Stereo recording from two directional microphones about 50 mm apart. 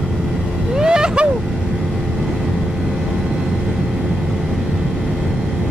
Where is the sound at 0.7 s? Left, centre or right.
Centre.